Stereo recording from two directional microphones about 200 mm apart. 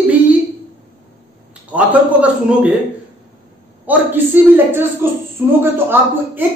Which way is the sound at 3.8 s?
10° right (ahead or behind).